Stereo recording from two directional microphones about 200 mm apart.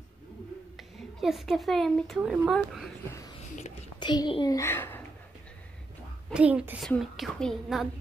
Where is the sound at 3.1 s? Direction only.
15° left (ahead or behind).